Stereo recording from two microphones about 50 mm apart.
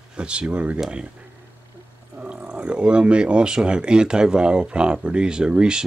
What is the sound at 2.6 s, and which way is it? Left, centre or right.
Speech, centre.